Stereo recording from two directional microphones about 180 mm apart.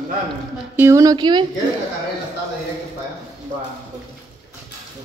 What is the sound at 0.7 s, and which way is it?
Speech, 15° right (ahead or behind).